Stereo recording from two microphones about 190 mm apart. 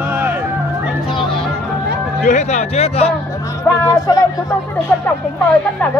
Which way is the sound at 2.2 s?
35° left (ahead or behind).